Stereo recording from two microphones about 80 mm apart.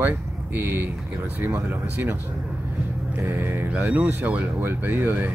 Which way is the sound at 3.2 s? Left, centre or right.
Right.